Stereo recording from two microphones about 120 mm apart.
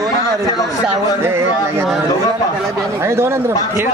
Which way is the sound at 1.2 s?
20° right (ahead or behind).